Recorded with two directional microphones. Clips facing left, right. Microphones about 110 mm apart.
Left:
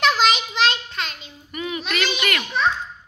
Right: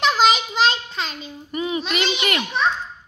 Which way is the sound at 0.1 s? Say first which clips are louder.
Right 2 dB; 35° right (ahead or behind).